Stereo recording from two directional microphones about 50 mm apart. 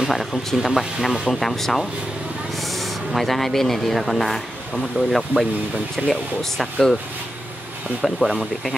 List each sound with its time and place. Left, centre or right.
0.0 s speech: centre
1.3 s speech: centre
6.0 s speech: centre
6.6 s speech: centre
8.0 s speech: centre